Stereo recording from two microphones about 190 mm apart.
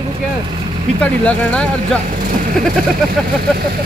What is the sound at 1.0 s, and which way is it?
Speech, 5° left (ahead or behind).